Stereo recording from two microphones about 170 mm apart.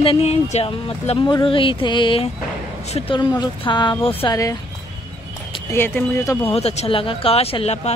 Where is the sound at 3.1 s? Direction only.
25° left (ahead or behind).